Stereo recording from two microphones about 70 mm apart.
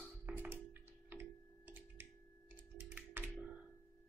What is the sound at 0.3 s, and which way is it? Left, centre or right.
Music, right.